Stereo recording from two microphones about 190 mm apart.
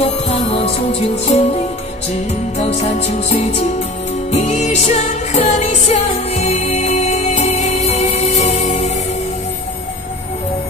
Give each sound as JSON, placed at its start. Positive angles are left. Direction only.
{"t": 0.0, "sound": "music", "side_deg": 30}
{"t": 2.7, "sound": "music", "side_deg": 35}